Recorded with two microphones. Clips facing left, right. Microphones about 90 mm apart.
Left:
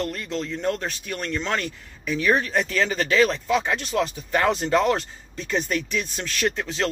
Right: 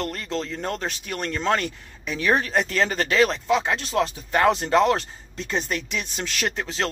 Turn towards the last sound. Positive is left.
turn(degrees=-30)  # may be behind; listen again after turning